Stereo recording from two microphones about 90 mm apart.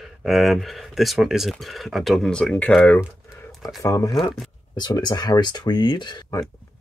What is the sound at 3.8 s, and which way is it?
Speech, 40° left (ahead or behind).